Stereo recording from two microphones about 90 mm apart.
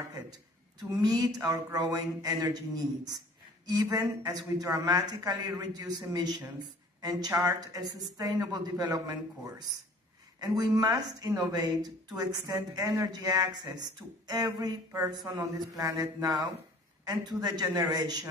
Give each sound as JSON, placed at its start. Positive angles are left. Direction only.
{"t": 0.1, "sound": "speech", "side_deg": -45}
{"t": 10.7, "sound": "speech", "side_deg": -45}